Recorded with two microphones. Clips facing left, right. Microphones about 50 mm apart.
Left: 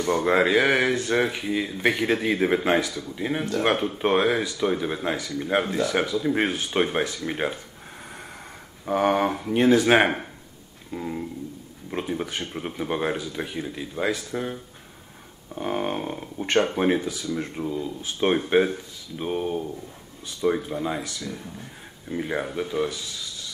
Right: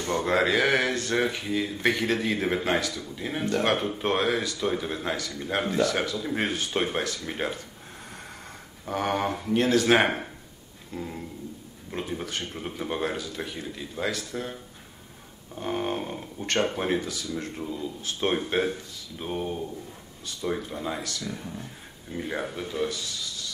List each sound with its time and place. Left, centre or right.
0.0 s speech: centre
8.8 s speech: centre